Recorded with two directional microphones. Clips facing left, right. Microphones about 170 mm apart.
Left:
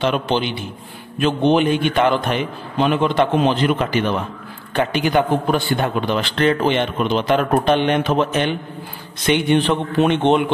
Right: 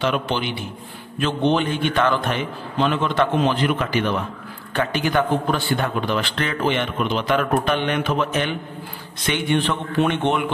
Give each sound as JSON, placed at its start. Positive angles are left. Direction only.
{"t": 0.0, "sound": "a man's voice", "side_deg": 25}
{"t": 1.2, "sound": "a man's voice", "side_deg": 15}
{"t": 4.9, "sound": "a man's voice", "side_deg": 15}